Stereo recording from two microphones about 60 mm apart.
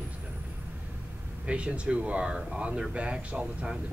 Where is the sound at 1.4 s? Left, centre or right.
Centre.